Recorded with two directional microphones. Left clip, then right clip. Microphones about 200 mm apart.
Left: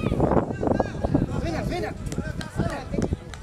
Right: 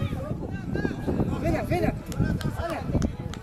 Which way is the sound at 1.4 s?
50° right (ahead or behind).